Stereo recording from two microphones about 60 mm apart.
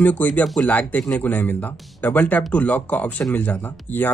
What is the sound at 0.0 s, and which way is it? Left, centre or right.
Speech, left.